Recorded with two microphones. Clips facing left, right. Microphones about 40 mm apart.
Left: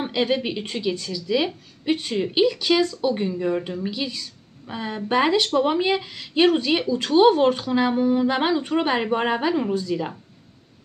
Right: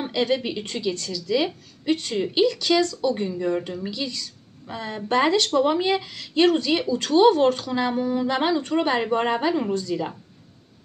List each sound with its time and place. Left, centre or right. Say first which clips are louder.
0.0 s speech: left 1 dB; centre